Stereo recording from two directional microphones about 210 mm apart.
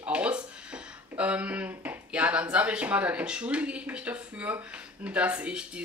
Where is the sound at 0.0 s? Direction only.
5° right (ahead or behind).